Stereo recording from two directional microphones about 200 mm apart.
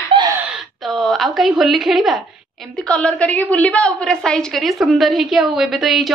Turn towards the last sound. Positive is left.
turn(degrees=0)  # may be behind; listen again after turning